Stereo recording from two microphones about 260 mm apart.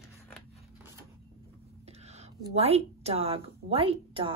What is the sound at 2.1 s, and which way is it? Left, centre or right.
A woman's voice, right.